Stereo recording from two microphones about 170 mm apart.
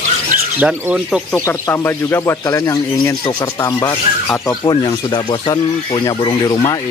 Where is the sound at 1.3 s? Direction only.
15° left (ahead or behind).